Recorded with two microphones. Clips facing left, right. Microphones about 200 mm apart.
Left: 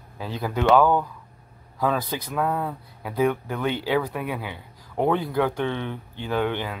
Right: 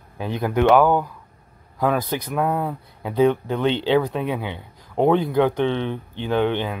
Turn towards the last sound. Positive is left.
turn(degrees=-20)  # may be behind; listen again after turning